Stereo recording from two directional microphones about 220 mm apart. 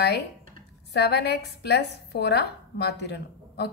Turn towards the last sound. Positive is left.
turn(degrees=50)  # may be behind; listen again after turning